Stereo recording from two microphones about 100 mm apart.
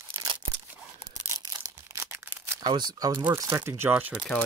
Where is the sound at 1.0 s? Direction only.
35° right (ahead or behind).